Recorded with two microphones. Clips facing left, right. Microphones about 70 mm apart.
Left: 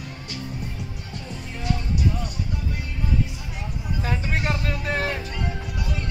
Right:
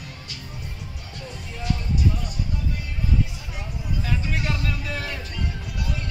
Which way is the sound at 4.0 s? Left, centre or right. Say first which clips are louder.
Left 2 dB; left.